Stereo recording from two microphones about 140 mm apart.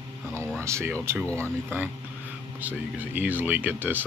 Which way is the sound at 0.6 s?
20° right (ahead or behind).